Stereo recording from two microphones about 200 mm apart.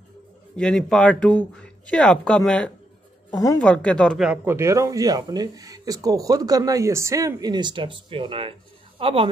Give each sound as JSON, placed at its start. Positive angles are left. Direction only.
{"t": 0.6, "sound": "speech", "side_deg": 5}